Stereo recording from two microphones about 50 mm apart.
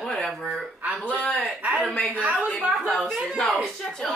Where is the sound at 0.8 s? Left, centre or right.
Right.